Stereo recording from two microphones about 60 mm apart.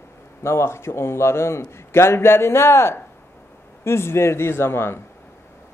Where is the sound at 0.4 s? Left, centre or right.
Left.